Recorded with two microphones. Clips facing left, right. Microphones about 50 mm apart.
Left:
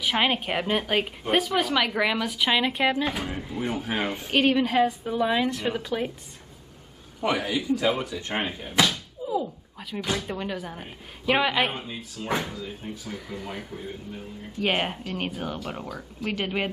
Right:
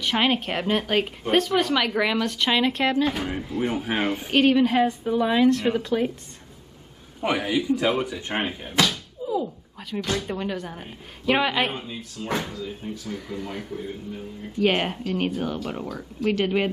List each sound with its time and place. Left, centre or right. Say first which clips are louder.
0.0 s speech: right 1 dB; centre
3.5 s speech: right 3 dB; centre
4.3 s speech: right 3 dB; centre
7.2 s a man's voice: right 2 dB; right
8.3 s speech: right 2 dB; centre
8.7 s speech: even; centre